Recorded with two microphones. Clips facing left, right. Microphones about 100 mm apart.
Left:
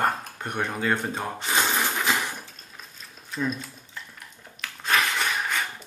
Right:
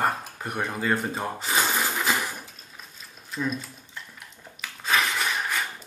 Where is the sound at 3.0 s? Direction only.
Centre (ahead or behind).